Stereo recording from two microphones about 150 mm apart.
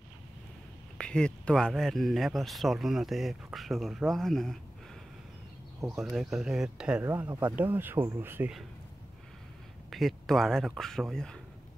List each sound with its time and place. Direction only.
0.9 s speech: 5° left (ahead or behind)
5.9 s speech: centre (ahead or behind)
9.8 s speech: centre (ahead or behind)